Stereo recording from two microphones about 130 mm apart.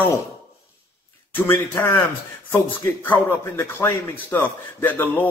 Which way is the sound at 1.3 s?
15° left (ahead or behind).